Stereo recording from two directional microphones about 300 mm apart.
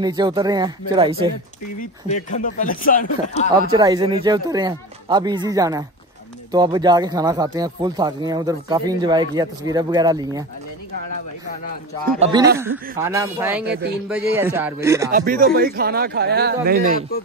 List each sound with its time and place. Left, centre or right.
0.0 s speech: centre
2.3 s speech: left
3.7 s speech: centre
12.2 s speech: centre
13.7 s speech: right
14.3 s speech: centre
15.1 s speech: right